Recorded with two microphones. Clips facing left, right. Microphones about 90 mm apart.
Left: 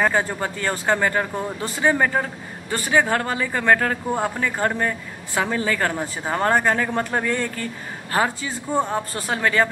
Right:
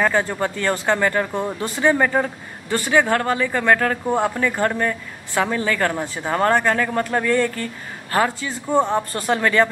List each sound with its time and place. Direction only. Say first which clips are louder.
0.0 s speech: right 1 dB; 10° left (ahead or behind)
8.7 s speech: right 4 dB; 20° right (ahead or behind)
9.3 s speech: right 3 dB; 10° left (ahead or behind)